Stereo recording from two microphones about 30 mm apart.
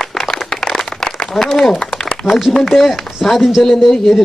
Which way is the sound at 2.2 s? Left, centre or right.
Centre.